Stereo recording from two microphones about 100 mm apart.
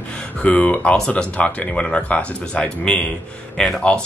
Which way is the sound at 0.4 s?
10° left (ahead or behind).